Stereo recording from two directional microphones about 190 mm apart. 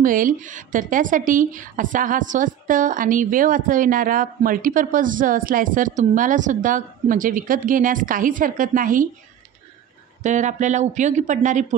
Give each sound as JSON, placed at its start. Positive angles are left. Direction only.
{"t": 0.0, "sound": "a woman's voice", "side_deg": -45}
{"t": 10.2, "sound": "speech", "side_deg": -40}